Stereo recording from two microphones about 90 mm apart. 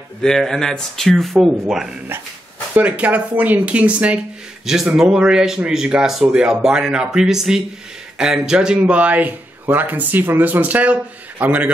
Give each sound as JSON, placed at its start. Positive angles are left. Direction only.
{"t": 0.2, "sound": "speech", "side_deg": 5}
{"t": 2.7, "sound": "speech", "side_deg": -15}